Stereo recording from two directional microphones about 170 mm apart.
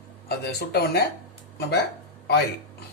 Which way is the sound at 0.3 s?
70° left (ahead or behind).